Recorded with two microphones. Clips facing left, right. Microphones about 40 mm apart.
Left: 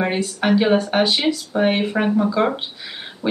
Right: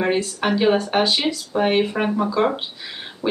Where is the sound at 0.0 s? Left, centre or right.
Centre.